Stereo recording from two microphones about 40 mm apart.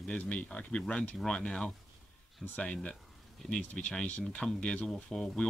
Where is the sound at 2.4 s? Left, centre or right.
Centre.